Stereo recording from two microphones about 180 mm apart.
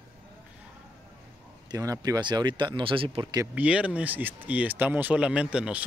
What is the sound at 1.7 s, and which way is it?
Speech, 20° right (ahead or behind).